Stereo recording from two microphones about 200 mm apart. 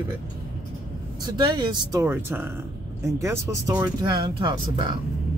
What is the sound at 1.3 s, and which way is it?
Speech, 20° right (ahead or behind).